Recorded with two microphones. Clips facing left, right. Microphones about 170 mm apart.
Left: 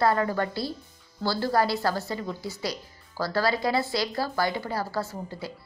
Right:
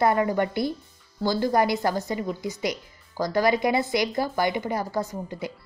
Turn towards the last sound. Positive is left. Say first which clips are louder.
# right 3 dB
turn(degrees=-20)  # may be behind; listen again after turning